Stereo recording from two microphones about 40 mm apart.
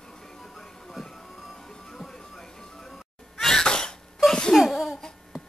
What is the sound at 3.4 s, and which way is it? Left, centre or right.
Cough, centre.